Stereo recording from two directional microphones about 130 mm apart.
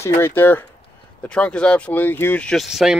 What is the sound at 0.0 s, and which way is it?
Speech, 20° left (ahead or behind).